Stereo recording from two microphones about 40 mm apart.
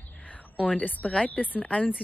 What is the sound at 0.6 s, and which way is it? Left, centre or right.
Speech, left.